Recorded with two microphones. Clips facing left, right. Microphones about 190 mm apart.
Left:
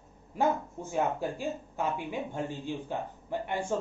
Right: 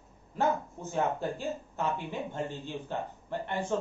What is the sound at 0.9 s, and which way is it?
Speech, 10° left (ahead or behind).